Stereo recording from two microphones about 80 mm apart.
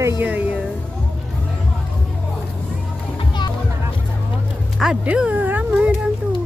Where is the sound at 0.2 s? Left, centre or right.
Right.